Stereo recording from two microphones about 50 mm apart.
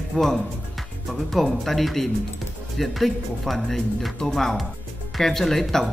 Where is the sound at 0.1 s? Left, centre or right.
Centre.